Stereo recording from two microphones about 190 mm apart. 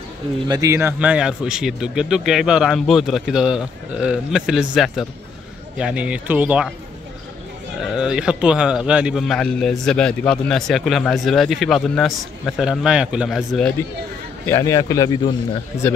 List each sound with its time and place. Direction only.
0.5 s a man's voice: 15° right (ahead or behind)
7.8 s a man's voice: 5° right (ahead or behind); by 15.9 s 15° left (ahead or behind)